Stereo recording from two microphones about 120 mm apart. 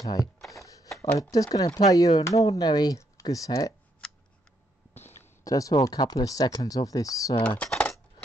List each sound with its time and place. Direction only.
0.2 s speech: centre (ahead or behind)
1.3 s speech: 30° left (ahead or behind)
4.9 s a sound: 15° left (ahead or behind)
5.5 s speech: 30° left (ahead or behind)
7.4 s coin: 10° left (ahead or behind)